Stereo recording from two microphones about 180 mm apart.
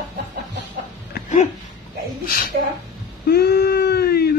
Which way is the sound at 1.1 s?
45° left (ahead or behind).